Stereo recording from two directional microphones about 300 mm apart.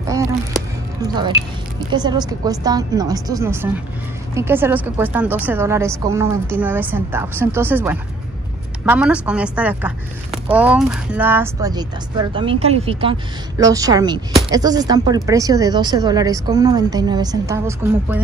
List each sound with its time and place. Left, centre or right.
0.0 s music: centre
1.0 s a woman's voice: centre